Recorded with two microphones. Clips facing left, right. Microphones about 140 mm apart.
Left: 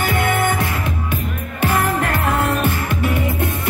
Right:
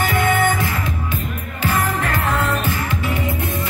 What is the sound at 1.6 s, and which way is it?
Music, 60° left (ahead or behind).